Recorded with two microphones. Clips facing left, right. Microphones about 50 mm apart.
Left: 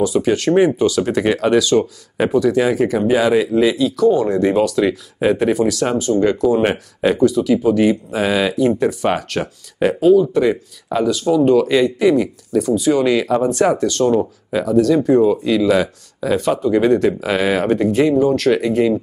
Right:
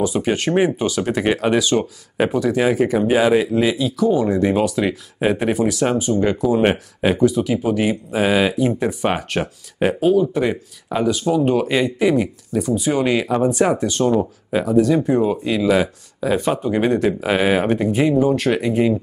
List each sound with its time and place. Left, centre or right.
0.0 s speech: centre
4.6 s speech: centre